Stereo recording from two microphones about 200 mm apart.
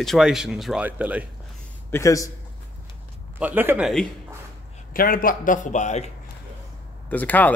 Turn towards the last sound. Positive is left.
turn(degrees=10)  # may be behind; listen again after turning